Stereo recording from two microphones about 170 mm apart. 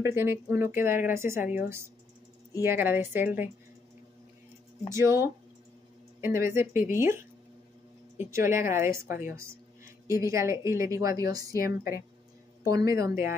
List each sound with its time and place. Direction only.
0.0 s speech: 15° right (ahead or behind)
4.9 s a woman's voice: 15° right (ahead or behind)
11.5 s a woman's voice: 60° left (ahead or behind)
12.6 s a woman's voice: 20° right (ahead or behind)